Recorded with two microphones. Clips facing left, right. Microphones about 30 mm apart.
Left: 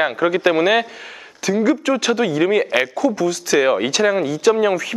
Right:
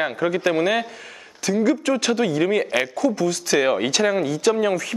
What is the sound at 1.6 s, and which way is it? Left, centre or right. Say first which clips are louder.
Speech: left 3 dB; centre.